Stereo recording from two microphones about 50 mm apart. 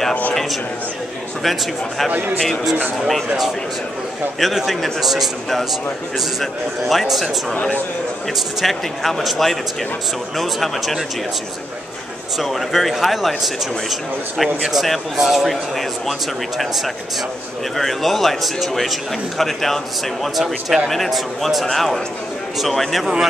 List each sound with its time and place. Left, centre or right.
0.3 s a sound: centre
1.4 s speech: centre
2.0 s a man's voice: right
4.4 s speech: centre
8.5 s speech: centre
12.4 s speech: centre
14.4 s speech: centre